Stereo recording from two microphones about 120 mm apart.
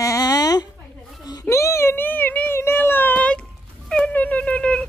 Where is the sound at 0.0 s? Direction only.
30° left (ahead or behind); by 4.8 s 10° left (ahead or behind).